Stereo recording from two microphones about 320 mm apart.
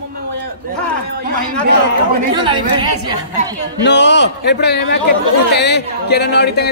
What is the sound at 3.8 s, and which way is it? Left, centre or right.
A man's voice, left.